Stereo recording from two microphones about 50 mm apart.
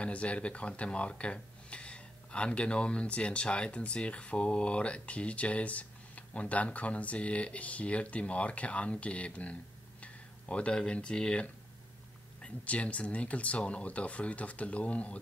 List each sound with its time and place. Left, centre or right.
0.0 s speech: left
10.0 s a sound: left
10.8 s speech: centre